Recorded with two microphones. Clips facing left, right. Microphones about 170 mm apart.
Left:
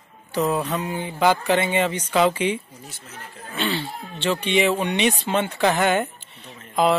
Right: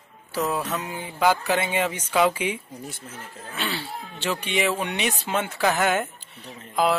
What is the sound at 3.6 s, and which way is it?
Speech, 5° right (ahead or behind).